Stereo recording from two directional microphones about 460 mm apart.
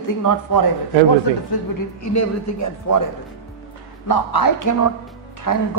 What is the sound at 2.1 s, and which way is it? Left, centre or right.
Speech, left.